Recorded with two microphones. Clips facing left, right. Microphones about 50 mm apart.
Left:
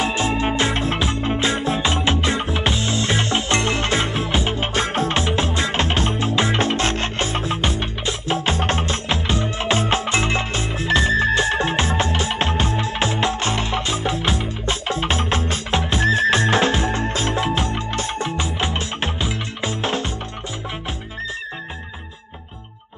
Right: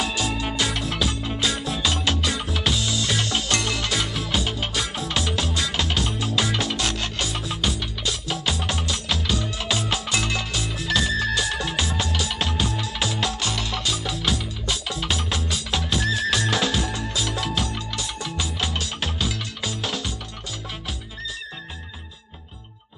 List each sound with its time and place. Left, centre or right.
0.0 s music: left